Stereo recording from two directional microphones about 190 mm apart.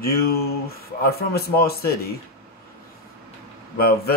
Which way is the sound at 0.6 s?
55° left (ahead or behind).